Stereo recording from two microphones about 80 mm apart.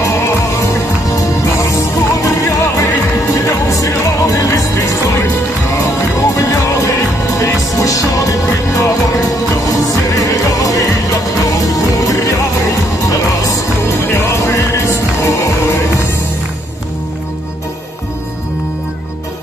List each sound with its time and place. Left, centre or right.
0.0 s music: left
13.8 s music: left